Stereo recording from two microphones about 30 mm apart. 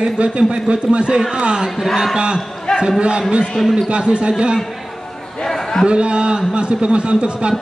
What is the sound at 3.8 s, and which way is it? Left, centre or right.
Speech, right.